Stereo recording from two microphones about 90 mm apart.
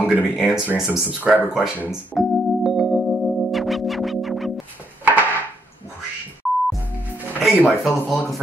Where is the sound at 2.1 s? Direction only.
Centre (ahead or behind).